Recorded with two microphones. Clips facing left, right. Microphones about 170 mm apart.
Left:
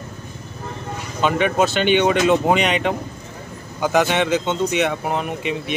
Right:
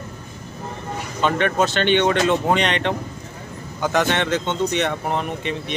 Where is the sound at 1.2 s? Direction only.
10° left (ahead or behind).